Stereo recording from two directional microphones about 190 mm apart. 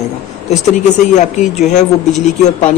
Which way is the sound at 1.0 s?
40° left (ahead or behind).